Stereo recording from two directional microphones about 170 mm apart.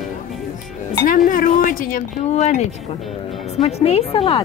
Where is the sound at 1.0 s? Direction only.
55° left (ahead or behind).